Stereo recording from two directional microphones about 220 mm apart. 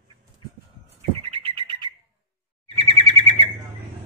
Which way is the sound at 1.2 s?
25° right (ahead or behind).